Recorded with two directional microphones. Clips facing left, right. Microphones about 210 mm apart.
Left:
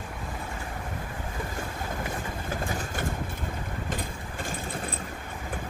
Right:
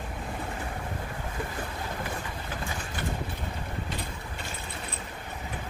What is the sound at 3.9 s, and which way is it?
Vehicle, 50° left (ahead or behind).